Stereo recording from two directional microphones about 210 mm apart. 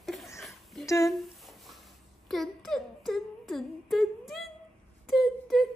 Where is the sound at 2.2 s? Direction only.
Centre (ahead or behind).